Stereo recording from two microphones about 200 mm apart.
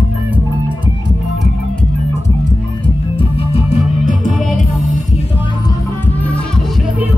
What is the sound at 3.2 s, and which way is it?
Music, 30° left (ahead or behind).